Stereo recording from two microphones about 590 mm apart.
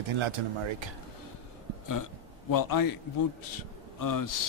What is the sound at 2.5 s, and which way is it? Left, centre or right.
Speech, left.